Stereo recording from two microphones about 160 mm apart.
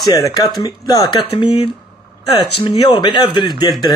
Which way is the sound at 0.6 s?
25° left (ahead or behind).